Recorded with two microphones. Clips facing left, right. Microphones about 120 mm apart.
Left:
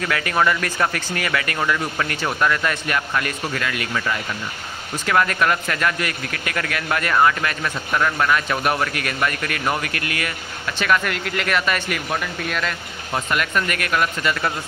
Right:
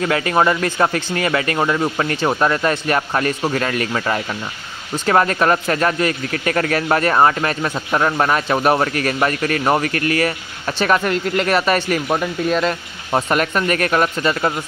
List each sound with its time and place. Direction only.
0.0 s speech: 30° right (ahead or behind)